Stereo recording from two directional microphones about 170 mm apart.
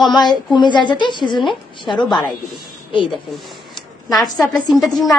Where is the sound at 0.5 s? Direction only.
25° left (ahead or behind).